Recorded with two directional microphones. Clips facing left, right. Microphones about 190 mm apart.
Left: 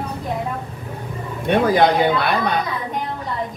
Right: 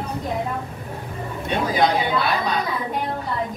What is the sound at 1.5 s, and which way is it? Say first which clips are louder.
Speech: left 5 dB; 60° left (ahead or behind).